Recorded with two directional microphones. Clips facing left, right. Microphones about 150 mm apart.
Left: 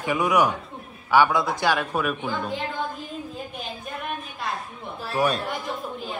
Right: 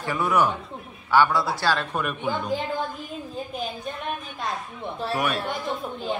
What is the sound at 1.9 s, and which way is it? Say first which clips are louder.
Speech: left 1 dB; centre (ahead or behind).